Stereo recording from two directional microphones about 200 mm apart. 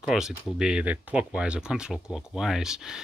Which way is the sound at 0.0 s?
5° right (ahead or behind).